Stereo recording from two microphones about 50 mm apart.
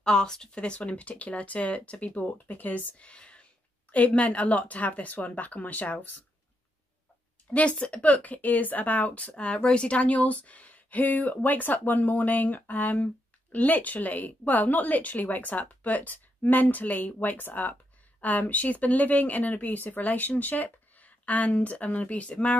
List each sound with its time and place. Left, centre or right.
0.0 s speech: centre; by 3.0 s left
3.0 s speech: left
7.5 s speech: left